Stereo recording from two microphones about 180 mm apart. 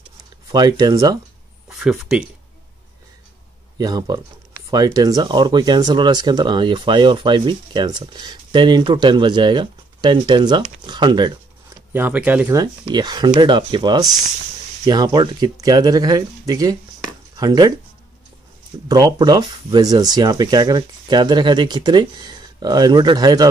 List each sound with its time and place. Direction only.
0.5 s speech: 20° right (ahead or behind)
1.7 s speech: 5° right (ahead or behind)
3.7 s speech: 20° right (ahead or behind)
11.9 s speech: 10° right (ahead or behind)
12.5 s speech: 25° right (ahead or behind)
18.9 s speech: 25° right (ahead or behind)